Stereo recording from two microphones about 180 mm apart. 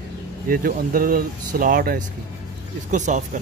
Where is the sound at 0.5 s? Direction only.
50° right (ahead or behind).